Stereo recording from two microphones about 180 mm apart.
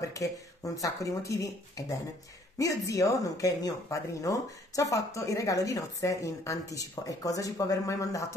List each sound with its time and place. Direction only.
0.1 s speech: 20° left (ahead or behind)